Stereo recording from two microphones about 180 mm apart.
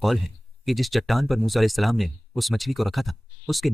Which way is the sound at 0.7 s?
Centre (ahead or behind).